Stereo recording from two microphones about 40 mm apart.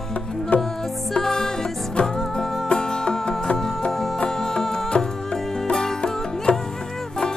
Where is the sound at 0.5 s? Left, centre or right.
Left.